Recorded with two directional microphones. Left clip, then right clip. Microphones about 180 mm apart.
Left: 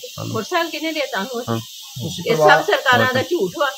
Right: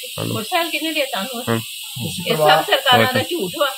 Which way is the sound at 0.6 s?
10° left (ahead or behind).